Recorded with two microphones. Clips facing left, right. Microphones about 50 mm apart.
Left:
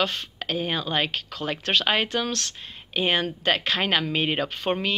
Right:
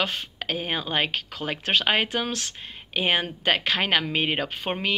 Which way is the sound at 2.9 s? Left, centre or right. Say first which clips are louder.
Even; right.